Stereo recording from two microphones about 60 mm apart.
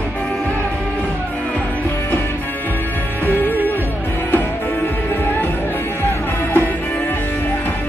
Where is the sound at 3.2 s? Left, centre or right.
Left.